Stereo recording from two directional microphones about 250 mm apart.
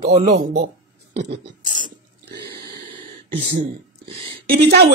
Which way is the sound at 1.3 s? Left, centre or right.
Right.